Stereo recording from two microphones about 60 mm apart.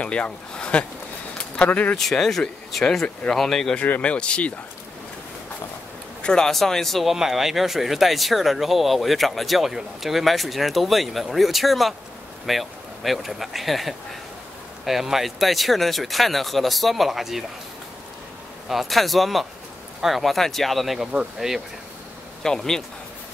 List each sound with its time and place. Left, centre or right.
0.0 s speech: centre
2.0 s speech: centre
3.8 s speech: left
6.2 s speech: centre
18.7 s speech: centre
22.4 s speech: centre